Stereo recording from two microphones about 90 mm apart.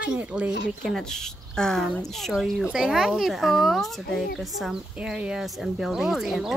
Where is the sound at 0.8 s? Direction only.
5° left (ahead or behind).